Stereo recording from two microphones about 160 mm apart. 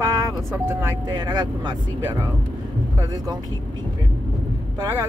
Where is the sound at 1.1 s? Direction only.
25° right (ahead or behind).